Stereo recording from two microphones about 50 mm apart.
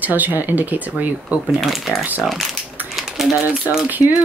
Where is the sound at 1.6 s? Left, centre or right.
Centre.